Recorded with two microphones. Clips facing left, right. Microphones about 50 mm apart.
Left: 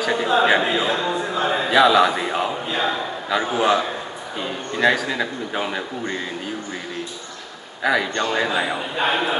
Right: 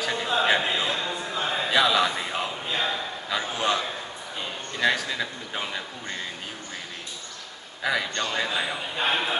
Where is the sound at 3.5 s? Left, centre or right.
Centre.